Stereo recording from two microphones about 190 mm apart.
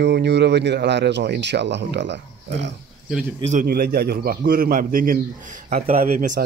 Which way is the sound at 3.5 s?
50° right (ahead or behind).